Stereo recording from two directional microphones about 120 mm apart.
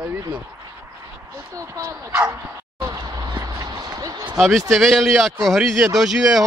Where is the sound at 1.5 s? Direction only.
30° right (ahead or behind).